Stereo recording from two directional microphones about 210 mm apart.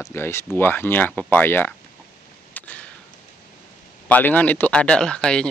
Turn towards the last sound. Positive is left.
turn(degrees=5)  # may be behind; listen again after turning